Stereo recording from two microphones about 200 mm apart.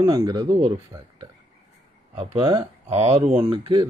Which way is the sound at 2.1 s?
30° right (ahead or behind).